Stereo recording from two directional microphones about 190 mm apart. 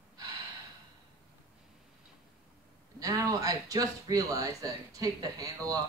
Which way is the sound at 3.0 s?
20° right (ahead or behind).